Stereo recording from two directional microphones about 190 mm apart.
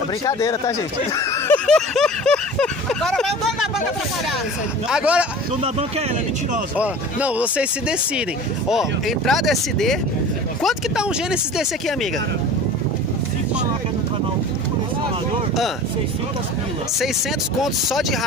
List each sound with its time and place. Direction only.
0.3 s speech: 15° left (ahead or behind)
1.7 s a sound: 5° left (ahead or behind)
4.8 s speech: 5° right (ahead or behind)
5.6 s speech: 30° right (ahead or behind)
6.8 s speech: 5° right (ahead or behind)
8.6 s speech: centre (ahead or behind)